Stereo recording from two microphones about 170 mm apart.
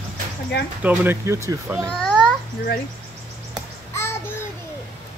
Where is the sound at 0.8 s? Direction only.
10° right (ahead or behind).